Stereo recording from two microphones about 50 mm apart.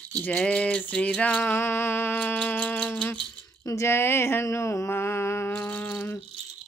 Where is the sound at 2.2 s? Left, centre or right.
Left.